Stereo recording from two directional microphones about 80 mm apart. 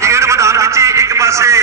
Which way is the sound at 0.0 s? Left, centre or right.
Right.